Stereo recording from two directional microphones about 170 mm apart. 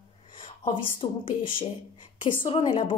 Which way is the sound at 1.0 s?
30° left (ahead or behind).